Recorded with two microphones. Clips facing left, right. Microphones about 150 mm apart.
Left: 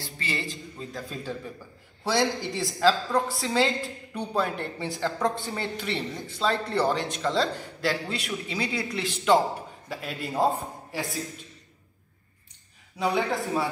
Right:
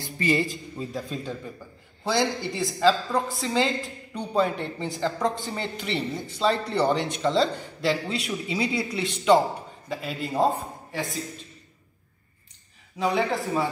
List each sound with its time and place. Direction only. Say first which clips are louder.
0.0 s a man's voice: right 9 dB; 15° right (ahead or behind)
0.7 s a man's voice: right 6 dB; centre (ahead or behind)
13.0 s speech: right 1 dB; centre (ahead or behind)